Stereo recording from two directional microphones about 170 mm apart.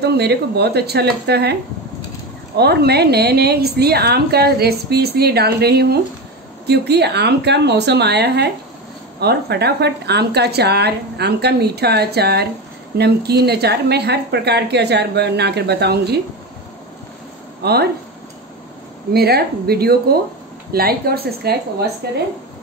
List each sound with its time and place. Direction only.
0.0 s a woman's voice: 75° right (ahead or behind)
17.6 s speech: 70° right (ahead or behind)
19.1 s a woman's voice: 65° right (ahead or behind)